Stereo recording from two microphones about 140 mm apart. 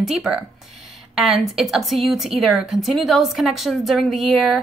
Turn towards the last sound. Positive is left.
turn(degrees=0)  # may be behind; listen again after turning